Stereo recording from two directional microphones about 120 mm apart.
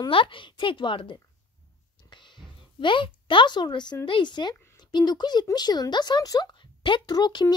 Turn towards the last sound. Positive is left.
turn(degrees=35)  # may be behind; listen again after turning